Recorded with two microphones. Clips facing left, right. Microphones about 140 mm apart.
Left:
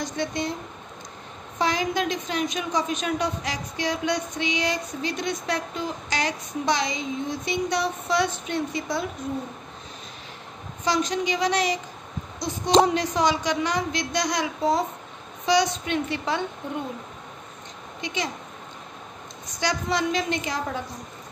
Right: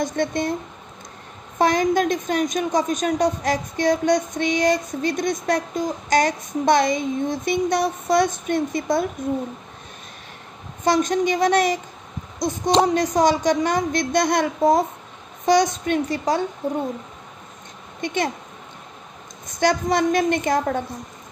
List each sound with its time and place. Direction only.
0.0 s a woman's voice: 50° right (ahead or behind)
1.6 s a woman's voice: 50° right (ahead or behind)
10.8 s a woman's voice: 50° right (ahead or behind)
18.0 s a woman's voice: 55° right (ahead or behind)
19.6 s a woman's voice: 50° right (ahead or behind)